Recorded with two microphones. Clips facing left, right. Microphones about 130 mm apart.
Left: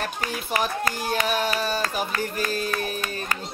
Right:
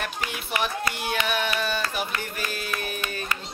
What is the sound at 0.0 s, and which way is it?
Speech, 35° left (ahead or behind).